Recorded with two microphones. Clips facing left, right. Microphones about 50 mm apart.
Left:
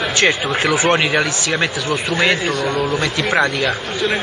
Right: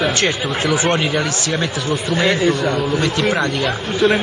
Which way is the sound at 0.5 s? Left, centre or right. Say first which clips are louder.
Left 2 dB; left.